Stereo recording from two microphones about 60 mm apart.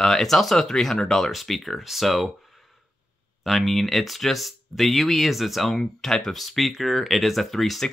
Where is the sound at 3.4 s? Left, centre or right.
Centre.